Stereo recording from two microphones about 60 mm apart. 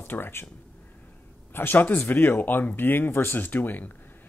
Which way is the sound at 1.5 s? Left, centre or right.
Left.